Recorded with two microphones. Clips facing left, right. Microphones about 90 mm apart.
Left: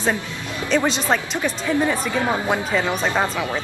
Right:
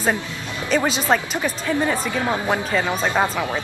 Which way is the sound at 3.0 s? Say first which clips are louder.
Right 1 dB; 15° right (ahead or behind).